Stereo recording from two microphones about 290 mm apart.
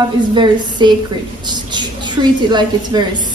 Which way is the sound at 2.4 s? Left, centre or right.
Centre.